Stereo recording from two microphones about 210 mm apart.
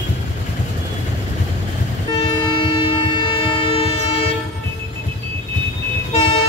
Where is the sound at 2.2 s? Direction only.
25° left (ahead or behind).